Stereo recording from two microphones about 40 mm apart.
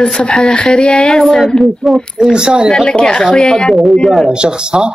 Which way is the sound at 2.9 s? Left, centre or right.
Centre.